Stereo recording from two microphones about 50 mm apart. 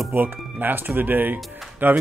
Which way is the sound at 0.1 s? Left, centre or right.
Right.